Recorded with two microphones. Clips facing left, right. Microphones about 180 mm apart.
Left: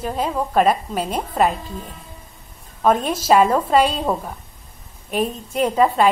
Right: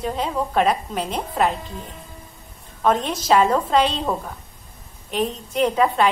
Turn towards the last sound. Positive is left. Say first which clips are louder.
# left 2 dB
turn(degrees=5)  # may be behind; listen again after turning